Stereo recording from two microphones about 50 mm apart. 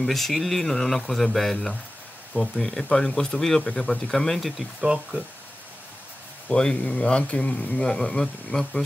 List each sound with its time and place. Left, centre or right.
0.0 s speech: centre
4.4 s speech: centre
6.5 s speech: centre